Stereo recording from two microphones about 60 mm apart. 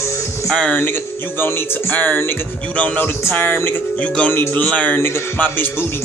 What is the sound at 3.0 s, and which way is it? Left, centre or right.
Speech, left.